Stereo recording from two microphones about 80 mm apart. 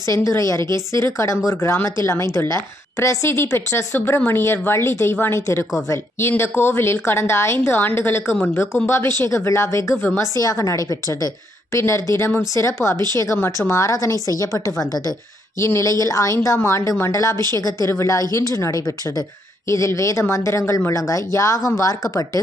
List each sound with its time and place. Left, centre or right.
0.0 s a woman's voice: left